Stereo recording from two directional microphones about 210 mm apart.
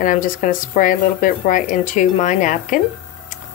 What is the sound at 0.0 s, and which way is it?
Speech, 40° left (ahead or behind).